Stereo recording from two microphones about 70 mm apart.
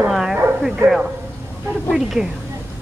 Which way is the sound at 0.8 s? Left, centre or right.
Right.